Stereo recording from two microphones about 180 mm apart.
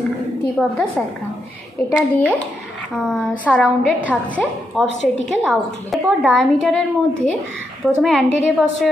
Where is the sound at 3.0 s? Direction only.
5° left (ahead or behind).